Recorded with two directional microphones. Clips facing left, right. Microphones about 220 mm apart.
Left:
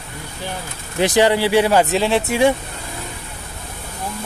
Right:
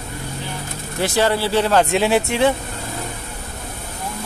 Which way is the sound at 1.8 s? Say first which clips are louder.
Right 1 dB; centre (ahead or behind).